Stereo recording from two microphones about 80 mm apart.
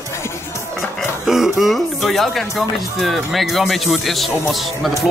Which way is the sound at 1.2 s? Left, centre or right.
Centre.